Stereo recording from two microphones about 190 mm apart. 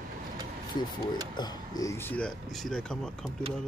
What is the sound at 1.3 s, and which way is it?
Speech, 20° left (ahead or behind).